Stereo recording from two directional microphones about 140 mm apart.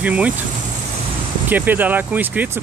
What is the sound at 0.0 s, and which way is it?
Speech, 10° right (ahead or behind).